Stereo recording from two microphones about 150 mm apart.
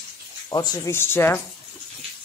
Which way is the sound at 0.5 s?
25° left (ahead or behind).